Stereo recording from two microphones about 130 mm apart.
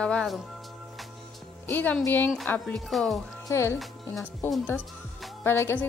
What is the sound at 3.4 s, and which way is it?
A woman's voice, 20° left (ahead or behind).